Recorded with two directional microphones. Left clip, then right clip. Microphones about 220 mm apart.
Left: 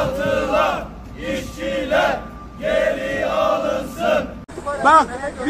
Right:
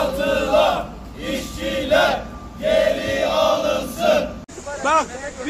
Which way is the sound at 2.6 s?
Centre (ahead or behind).